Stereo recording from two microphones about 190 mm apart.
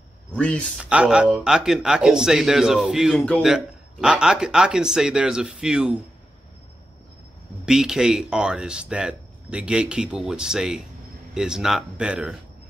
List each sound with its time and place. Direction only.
0.3 s speech: 5° left (ahead or behind)
0.8 s speech: 5° right (ahead or behind)
7.6 s speech: 5° right (ahead or behind)